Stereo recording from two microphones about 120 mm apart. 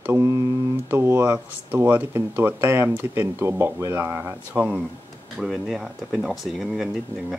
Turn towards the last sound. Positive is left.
turn(degrees=-5)  # may be behind; listen again after turning